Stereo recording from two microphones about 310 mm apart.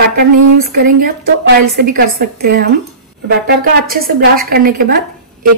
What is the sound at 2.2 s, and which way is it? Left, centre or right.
A woman's voice, right.